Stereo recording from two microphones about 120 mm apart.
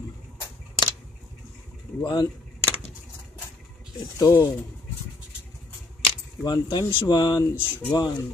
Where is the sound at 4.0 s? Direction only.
25° left (ahead or behind).